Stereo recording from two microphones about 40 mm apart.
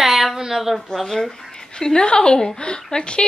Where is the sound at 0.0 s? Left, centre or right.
Centre.